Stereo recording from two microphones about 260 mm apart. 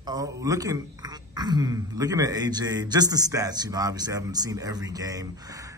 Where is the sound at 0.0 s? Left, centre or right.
Centre.